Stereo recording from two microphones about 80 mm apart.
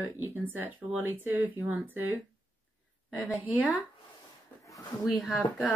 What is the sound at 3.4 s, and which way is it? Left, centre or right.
Speech, centre.